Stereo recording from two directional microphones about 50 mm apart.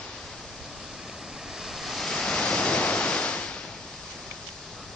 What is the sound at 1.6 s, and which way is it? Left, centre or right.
Waves, centre.